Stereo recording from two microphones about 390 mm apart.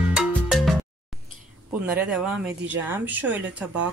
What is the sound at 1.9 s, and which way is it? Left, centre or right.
Speech, centre.